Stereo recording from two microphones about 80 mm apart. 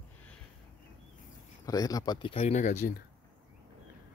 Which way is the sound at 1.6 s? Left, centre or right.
Left.